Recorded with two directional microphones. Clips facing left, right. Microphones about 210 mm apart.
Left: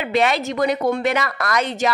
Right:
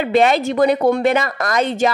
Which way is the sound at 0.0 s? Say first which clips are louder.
Right 5 dB; 35° right (ahead or behind).